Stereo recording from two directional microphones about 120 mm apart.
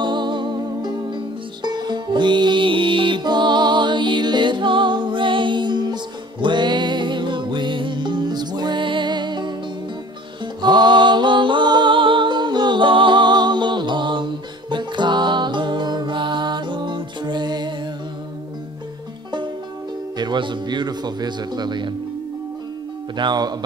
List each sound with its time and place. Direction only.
0.0 s music: 40° right (ahead or behind)
20.2 s speech: 40° right (ahead or behind)
23.1 s speech: 35° right (ahead or behind)